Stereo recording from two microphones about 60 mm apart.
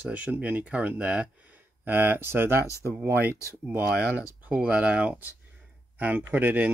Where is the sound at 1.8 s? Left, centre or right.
Right.